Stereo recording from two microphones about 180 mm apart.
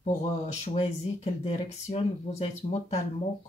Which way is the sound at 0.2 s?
40° left (ahead or behind).